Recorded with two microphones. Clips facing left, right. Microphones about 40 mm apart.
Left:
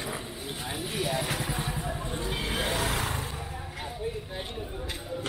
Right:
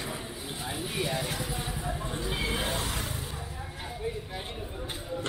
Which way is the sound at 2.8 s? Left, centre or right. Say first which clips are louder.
Left 4 dB; left.